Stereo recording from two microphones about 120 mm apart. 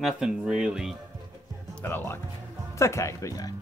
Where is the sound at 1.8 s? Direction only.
15° left (ahead or behind).